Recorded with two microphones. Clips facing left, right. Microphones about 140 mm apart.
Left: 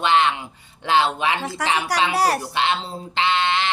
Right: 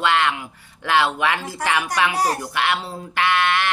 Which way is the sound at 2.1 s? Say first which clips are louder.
Left 2 dB; 85° left.